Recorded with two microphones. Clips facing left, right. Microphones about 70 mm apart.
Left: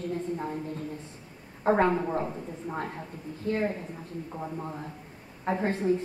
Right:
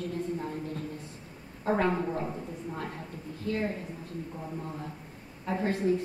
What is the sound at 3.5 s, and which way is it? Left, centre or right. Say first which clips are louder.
Speech: left 3 dB; left.